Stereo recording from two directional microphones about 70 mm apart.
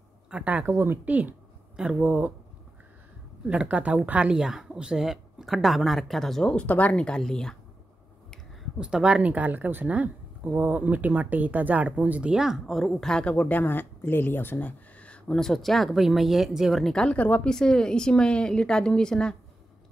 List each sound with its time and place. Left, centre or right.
0.3 s speech: centre
0.7 s speech: right
1.0 s speech: right
3.4 s a woman's voice: centre
6.5 s a woman's voice: left
8.7 s speech: centre
12.3 s a woman's voice: centre
15.4 s a woman's voice: centre
16.8 s a woman's voice: centre
17.5 s a woman's voice: centre